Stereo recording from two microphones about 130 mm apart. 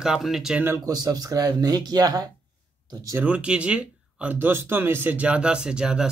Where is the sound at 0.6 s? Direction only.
30° right (ahead or behind).